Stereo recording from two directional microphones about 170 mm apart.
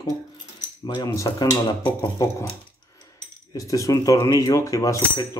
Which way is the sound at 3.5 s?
20° left (ahead or behind).